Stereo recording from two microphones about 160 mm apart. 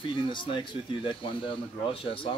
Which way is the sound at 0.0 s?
30° left (ahead or behind).